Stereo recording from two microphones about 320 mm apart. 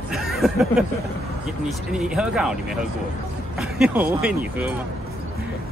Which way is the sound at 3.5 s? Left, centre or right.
Centre.